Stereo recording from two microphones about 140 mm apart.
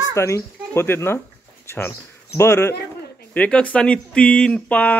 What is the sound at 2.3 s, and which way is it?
Speech, 20° left (ahead or behind).